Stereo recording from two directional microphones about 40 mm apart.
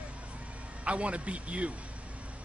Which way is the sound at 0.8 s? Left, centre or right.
Right.